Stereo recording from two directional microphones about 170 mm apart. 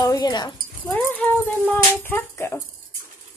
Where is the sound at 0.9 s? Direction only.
5° left (ahead or behind).